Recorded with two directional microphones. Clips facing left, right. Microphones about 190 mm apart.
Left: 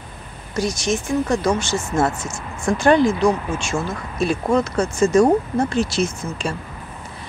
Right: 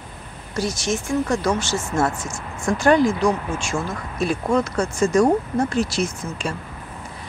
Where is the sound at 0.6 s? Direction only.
15° left (ahead or behind).